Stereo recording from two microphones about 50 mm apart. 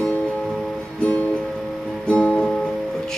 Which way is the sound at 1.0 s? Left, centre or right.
Left.